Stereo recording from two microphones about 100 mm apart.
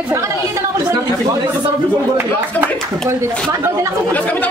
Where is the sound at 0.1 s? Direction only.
30° right (ahead or behind).